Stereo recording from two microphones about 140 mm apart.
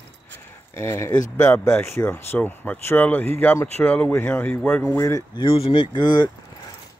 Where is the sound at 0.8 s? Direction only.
20° left (ahead or behind).